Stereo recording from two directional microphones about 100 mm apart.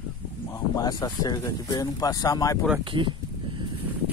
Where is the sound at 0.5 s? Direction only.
40° left (ahead or behind).